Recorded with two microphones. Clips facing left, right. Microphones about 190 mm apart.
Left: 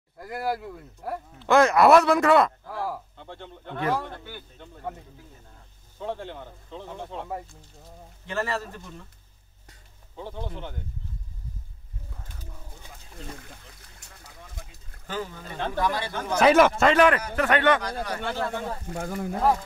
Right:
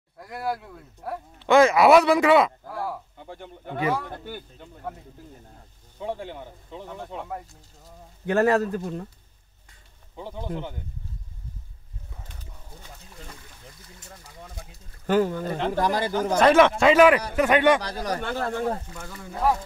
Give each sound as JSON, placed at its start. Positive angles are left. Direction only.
{"t": 0.2, "sound": "speech", "side_deg": 0}
{"t": 5.9, "sound": "speech", "side_deg": -10}
{"t": 8.3, "sound": "speech", "side_deg": -60}
{"t": 10.1, "sound": "speech", "side_deg": -15}
{"t": 15.0, "sound": "speech", "side_deg": -50}
{"t": 16.3, "sound": "speech", "side_deg": 5}
{"t": 17.8, "sound": "speech", "side_deg": -40}
{"t": 18.9, "sound": "speech", "side_deg": 55}